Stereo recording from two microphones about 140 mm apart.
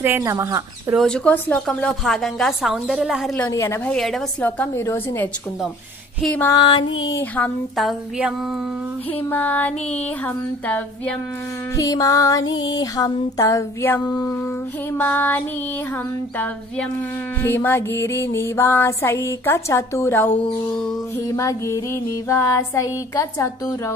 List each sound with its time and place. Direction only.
0.0 s speech: 20° right (ahead or behind)
0.9 s a woman's voice: 5° left (ahead or behind)
3.3 s music: 15° left (ahead or behind)
3.9 s a woman's voice: 5° left (ahead or behind)
4.5 s music: 15° left (ahead or behind)
6.5 s music: 30° left (ahead or behind)
7.2 s music: 10° left (ahead or behind)
7.7 s a woman's voice: centre (ahead or behind)
9.3 s music: 10° left (ahead or behind)
11.7 s music: 25° left (ahead or behind)
15.0 s music: 15° left (ahead or behind)
17.4 s music: 15° left (ahead or behind)
21.4 s music: 20° left (ahead or behind)